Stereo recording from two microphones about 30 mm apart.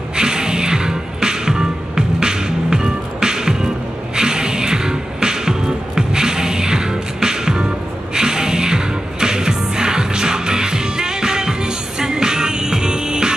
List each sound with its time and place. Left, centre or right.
0.1 s music: right